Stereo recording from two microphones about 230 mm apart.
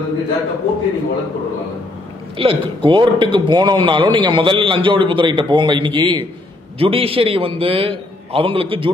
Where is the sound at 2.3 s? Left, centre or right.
Right.